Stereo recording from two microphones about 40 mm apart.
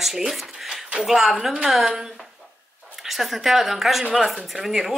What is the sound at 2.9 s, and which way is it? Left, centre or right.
A woman's voice, centre.